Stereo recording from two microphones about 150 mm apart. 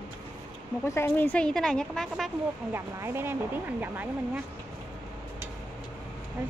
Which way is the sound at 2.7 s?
15° right (ahead or behind).